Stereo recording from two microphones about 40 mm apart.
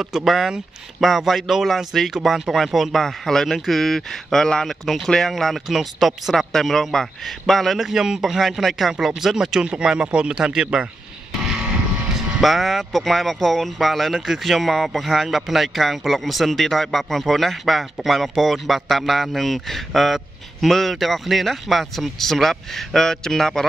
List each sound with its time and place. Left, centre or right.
0.0 s speech: centre
4.8 s speech: centre
6.6 s speech: centre
7.7 s speech: centre
12.1 s speech: centre